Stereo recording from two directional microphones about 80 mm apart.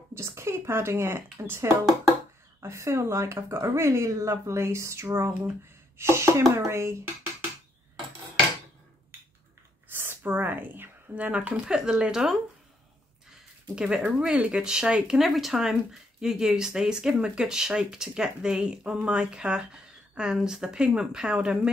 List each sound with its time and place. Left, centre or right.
0.1 s speech: right
9.8 s a sound: right
11.7 s speech: centre
13.7 s speech: centre